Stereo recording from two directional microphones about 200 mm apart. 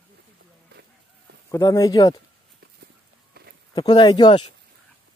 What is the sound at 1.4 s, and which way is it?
Speech, 15° left (ahead or behind).